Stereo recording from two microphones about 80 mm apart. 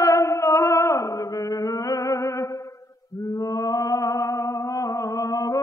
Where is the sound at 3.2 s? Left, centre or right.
Left.